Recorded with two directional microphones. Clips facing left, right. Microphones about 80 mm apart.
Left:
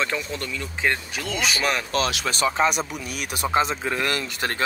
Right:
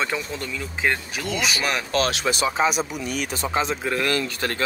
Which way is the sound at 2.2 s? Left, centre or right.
Centre.